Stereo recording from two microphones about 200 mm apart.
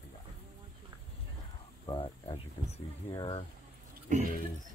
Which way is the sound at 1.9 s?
25° left (ahead or behind).